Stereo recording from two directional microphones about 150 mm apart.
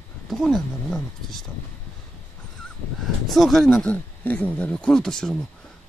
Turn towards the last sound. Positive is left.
turn(degrees=5)  # may be behind; listen again after turning